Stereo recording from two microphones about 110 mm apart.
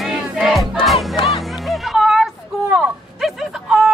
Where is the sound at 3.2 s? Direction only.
5° right (ahead or behind).